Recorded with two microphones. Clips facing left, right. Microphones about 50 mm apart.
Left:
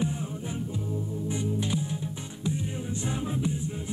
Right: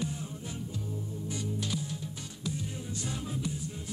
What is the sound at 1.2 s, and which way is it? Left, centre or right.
Music, left.